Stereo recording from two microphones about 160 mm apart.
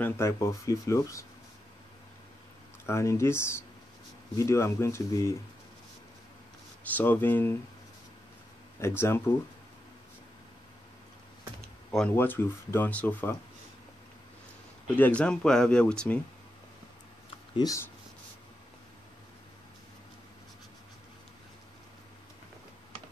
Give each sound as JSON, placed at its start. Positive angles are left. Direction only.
{"t": 0.0, "sound": "speech", "side_deg": 15}
{"t": 2.9, "sound": "speech", "side_deg": 15}
{"t": 6.8, "sound": "speech", "side_deg": 10}
{"t": 8.8, "sound": "speech", "side_deg": 15}
{"t": 12.2, "sound": "speech", "side_deg": 15}
{"t": 15.0, "sound": "speech", "side_deg": 10}
{"t": 17.6, "sound": "speech", "side_deg": 20}